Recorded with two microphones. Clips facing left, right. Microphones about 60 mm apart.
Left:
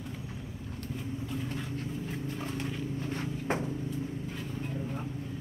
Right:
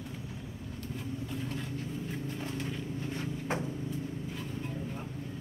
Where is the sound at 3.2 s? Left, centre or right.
Left.